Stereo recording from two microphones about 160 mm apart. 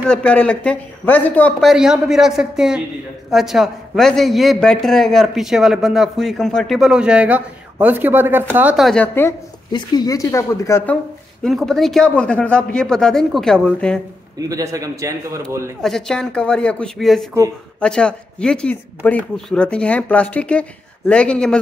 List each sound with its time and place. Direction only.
0.1 s a man's voice: 5° left (ahead or behind); by 8.7 s 10° right (ahead or behind)
8.7 s a man's voice: centre (ahead or behind)
9.0 s speech: 15° left (ahead or behind)
9.7 s speech: 25° left (ahead or behind)
11.4 s a man's voice: centre (ahead or behind)
14.5 s a man's voice: 20° right (ahead or behind)
15.8 s a man's voice: 5° left (ahead or behind)